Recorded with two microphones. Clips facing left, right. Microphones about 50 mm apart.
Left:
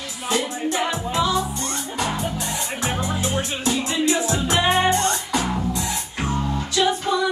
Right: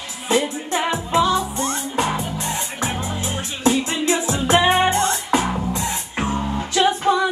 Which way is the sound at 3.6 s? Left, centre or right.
Right.